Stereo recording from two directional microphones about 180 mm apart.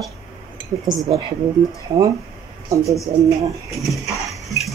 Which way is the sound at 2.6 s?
15° right (ahead or behind).